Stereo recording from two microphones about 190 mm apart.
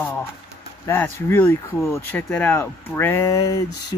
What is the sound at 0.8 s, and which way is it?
Speech, 10° left (ahead or behind).